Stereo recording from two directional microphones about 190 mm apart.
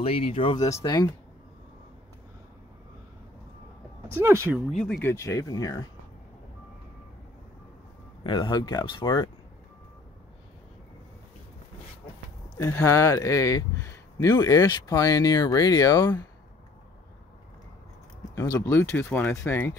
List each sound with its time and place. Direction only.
0.0 s speech: 30° left (ahead or behind)
4.2 s speech: 10° right (ahead or behind)
4.6 s speech: centre (ahead or behind)
5.0 s speech: 15° left (ahead or behind)
8.2 s speech: 25° left (ahead or behind)
12.5 s speech: 15° left (ahead or behind)
18.3 s speech: 15° left (ahead or behind)